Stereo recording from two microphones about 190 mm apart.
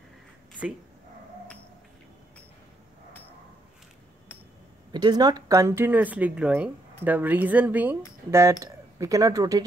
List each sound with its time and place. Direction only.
4.9 s speech: 20° right (ahead or behind)